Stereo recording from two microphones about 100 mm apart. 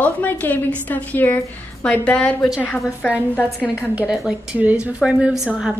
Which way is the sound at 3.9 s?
5° right (ahead or behind).